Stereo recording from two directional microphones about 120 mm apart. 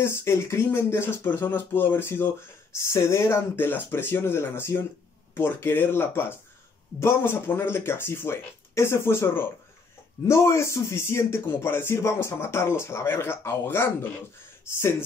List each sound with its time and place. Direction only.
0.0 s speech: 20° left (ahead or behind)